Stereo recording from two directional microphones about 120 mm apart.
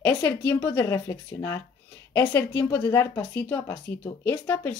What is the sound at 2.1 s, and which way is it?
Speech, 15° left (ahead or behind).